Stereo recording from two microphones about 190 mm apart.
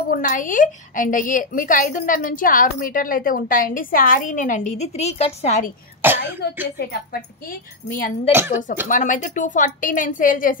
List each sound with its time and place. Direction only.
0.1 s a woman's voice: 45° left (ahead or behind)
6.0 s throat clearing: 10° right (ahead or behind)
6.4 s a woman's voice: 55° left (ahead or behind)
8.3 s speech: 10° right (ahead or behind)
8.8 s a woman's voice: 45° left (ahead or behind)